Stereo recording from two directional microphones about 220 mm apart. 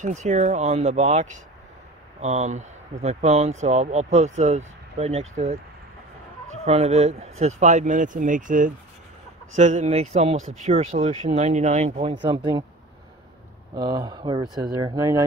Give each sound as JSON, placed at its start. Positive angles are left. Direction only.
{"t": 0.0, "sound": "a man's voice", "side_deg": -35}
{"t": 6.6, "sound": "a man's voice", "side_deg": -30}
{"t": 13.7, "sound": "speech", "side_deg": -20}